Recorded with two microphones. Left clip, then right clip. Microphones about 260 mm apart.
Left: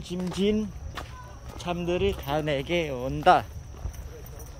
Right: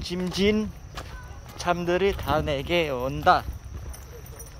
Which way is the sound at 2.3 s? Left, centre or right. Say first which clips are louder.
Right 2 dB; centre.